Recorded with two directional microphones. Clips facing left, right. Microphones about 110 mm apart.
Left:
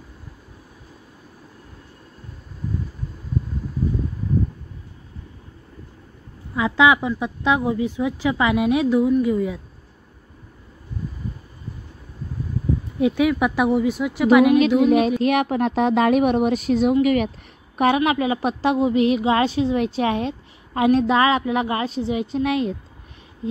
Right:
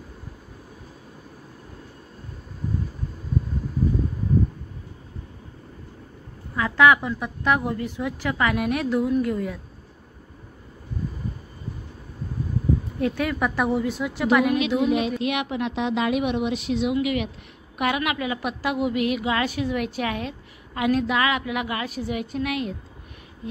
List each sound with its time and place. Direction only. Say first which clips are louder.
6.5 s a woman's voice: left 1 dB; 15° left (ahead or behind)
9.0 s a woman's voice: left 4 dB; 5° left (ahead or behind)
13.0 s a woman's voice: left 7 dB; 10° left (ahead or behind)
14.8 s a woman's voice: left 6 dB; 50° left (ahead or behind)
17.7 s a woman's voice: left 6 dB; 30° left (ahead or behind)